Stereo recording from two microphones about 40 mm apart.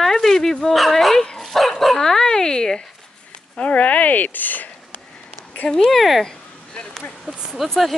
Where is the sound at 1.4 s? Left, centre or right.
Centre.